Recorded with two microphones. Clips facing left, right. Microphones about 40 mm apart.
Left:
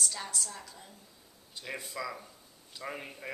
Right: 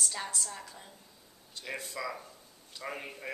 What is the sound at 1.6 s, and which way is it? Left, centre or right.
Speech, centre.